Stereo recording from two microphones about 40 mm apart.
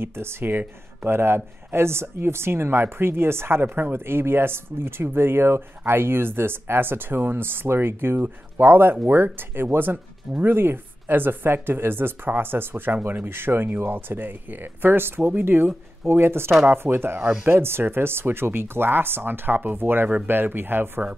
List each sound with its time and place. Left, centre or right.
0.0 s speech: right
0.5 s speech: right
3.7 s speech: right